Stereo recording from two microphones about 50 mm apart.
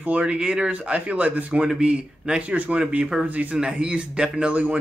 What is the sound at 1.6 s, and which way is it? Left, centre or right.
Speech, centre.